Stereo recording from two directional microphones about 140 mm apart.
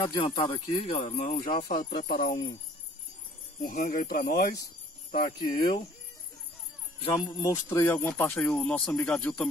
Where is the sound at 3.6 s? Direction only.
75° left (ahead or behind); by 4.4 s 90° left.